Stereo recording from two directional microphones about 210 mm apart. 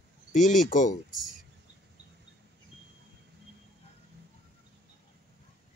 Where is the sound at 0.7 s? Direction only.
35° left (ahead or behind).